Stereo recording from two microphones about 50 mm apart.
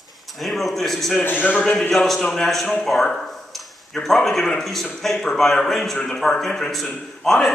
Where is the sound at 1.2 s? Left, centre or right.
Left.